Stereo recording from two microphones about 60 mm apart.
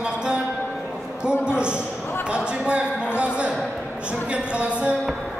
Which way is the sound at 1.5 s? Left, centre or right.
Centre.